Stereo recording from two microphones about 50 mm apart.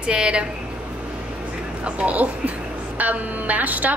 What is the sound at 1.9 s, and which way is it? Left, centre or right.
A woman's voice, right.